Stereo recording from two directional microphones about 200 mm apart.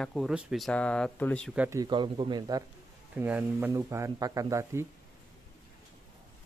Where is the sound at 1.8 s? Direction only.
25° right (ahead or behind).